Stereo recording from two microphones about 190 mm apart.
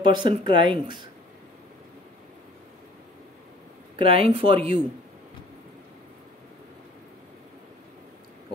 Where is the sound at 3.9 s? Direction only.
30° right (ahead or behind).